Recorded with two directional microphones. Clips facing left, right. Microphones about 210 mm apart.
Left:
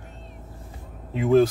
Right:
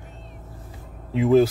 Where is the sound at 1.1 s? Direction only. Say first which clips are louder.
Right 1 dB; centre (ahead or behind).